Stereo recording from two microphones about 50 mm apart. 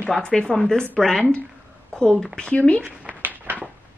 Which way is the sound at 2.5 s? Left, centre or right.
Left.